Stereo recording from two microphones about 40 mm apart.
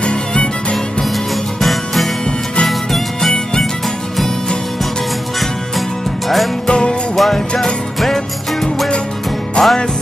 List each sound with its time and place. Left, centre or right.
0.0 s music: left
1.6 s music: centre
5.8 s music: centre
6.7 s music: left
7.2 s music: centre
9.6 s music: left